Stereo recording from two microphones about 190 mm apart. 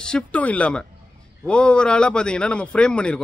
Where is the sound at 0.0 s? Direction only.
5° left (ahead or behind).